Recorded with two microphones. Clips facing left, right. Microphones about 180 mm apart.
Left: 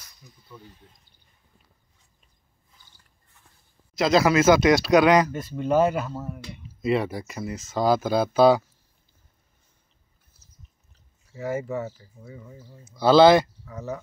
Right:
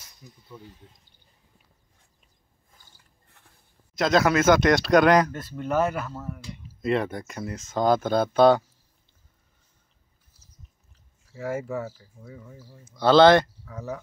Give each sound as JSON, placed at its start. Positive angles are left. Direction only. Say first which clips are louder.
{"t": 0.5, "sound": "speech", "louder": "right 2 dB", "side_deg": -25}
{"t": 2.7, "sound": "mechanisms", "louder": "right 1 dB", "side_deg": -55}
{"t": 3.9, "sound": "speech", "louder": "left 2 dB", "side_deg": 5}
{"t": 6.8, "sound": "speech", "louder": "left 1 dB", "side_deg": 5}
{"t": 11.3, "sound": "speech", "louder": "left 1 dB", "side_deg": 0}